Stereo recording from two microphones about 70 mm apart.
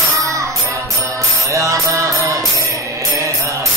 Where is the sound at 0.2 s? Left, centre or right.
Right.